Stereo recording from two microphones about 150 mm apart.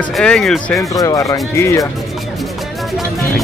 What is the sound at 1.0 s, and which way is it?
Speech, 20° left (ahead or behind).